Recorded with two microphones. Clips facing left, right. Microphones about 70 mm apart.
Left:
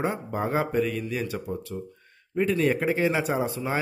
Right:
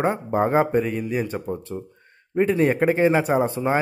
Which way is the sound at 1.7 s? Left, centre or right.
Right.